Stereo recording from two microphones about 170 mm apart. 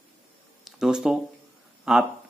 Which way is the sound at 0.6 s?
Centre (ahead or behind).